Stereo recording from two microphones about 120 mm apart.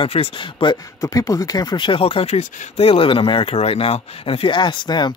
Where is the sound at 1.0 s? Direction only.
30° left (ahead or behind).